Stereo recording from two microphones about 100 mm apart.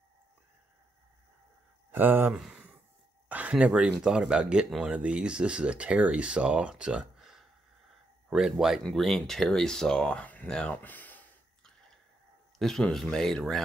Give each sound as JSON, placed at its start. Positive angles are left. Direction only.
{"t": 1.9, "sound": "speech", "side_deg": -20}
{"t": 2.3, "sound": "speech", "side_deg": -5}
{"t": 3.3, "sound": "a sound", "side_deg": -15}
{"t": 4.0, "sound": "speech", "side_deg": -5}
{"t": 10.8, "sound": "a sound", "side_deg": 20}
{"t": 12.5, "sound": "speech", "side_deg": 5}